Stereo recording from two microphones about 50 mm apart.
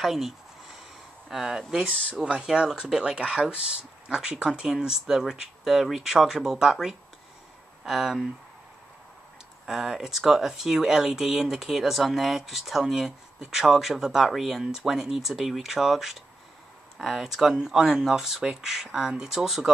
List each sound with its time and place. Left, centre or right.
0.0 s speech: centre
1.3 s speech: centre
2.2 s speech: centre
9.7 s speech: centre